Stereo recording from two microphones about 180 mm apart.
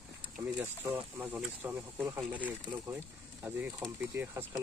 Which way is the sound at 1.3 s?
5° right (ahead or behind).